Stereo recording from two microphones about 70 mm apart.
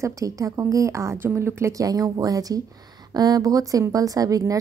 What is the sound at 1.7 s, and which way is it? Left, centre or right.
A woman's voice, right.